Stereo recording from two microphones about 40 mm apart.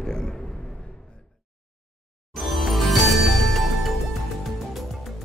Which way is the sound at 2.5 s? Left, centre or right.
Centre.